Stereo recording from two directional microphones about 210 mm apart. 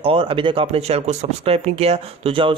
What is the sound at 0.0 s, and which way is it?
A man's voice, 25° right (ahead or behind).